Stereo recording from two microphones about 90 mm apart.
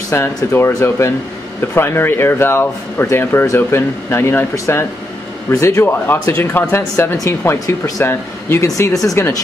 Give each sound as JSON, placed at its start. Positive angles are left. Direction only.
{"t": 0.1, "sound": "speech", "side_deg": 30}